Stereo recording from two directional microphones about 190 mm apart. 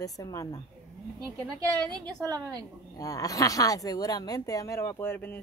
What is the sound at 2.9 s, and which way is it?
Speech, 20° left (ahead or behind).